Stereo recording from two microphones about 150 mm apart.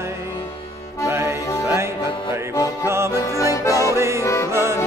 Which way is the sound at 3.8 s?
20° right (ahead or behind).